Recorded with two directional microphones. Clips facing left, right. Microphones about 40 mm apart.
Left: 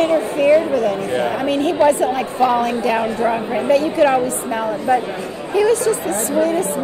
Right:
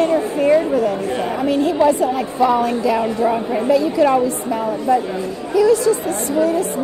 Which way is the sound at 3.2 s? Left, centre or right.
Left.